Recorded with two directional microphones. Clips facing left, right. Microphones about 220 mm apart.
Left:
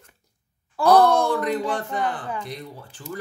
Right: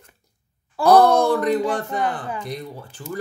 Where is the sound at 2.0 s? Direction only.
5° right (ahead or behind).